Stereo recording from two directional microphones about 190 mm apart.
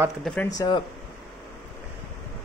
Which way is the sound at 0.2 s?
5° left (ahead or behind).